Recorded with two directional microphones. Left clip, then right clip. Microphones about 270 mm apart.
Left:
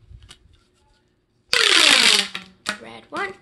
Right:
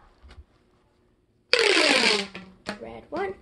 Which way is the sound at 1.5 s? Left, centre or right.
Centre.